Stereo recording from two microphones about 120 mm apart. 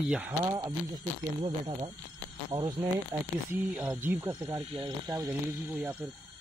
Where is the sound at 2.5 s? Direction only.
40° right (ahead or behind).